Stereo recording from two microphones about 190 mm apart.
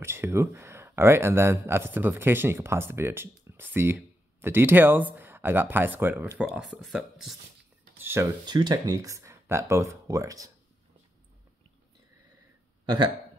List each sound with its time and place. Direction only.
0.0 s speech: 15° right (ahead or behind)
8.0 s speech: 15° right (ahead or behind)